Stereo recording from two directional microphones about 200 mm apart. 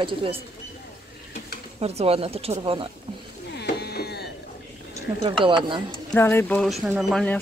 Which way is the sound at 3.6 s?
55° left (ahead or behind).